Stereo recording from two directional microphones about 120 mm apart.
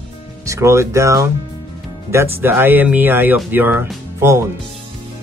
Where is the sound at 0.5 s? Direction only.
25° right (ahead or behind).